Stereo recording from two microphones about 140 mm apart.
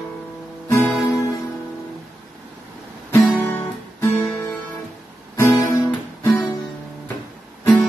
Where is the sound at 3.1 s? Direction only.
15° left (ahead or behind).